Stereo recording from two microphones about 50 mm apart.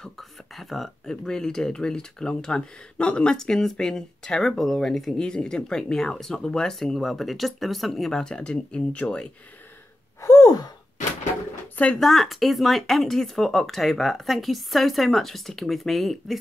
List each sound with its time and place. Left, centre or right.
0.6 s speech: centre
8.2 s speech: centre
11.9 s speech: centre